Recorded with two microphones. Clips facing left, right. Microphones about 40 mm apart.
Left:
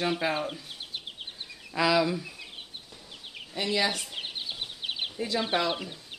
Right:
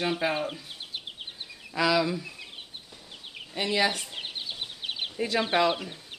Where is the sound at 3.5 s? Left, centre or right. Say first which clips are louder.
Right 2 dB; centre.